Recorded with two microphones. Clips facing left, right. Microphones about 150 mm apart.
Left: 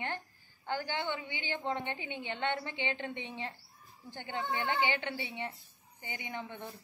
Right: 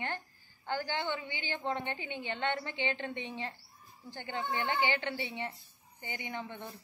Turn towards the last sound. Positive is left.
turn(degrees=15)  # may be behind; listen again after turning